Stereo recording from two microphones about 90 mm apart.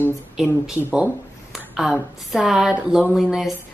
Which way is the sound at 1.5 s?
5° right (ahead or behind).